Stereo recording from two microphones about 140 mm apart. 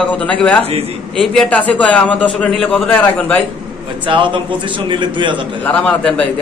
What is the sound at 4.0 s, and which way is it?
A man's voice, 35° right (ahead or behind).